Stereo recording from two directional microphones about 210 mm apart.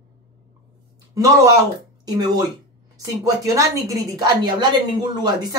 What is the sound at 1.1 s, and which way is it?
Speech, 15° right (ahead or behind).